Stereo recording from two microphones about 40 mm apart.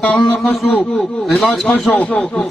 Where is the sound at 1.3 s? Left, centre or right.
Centre.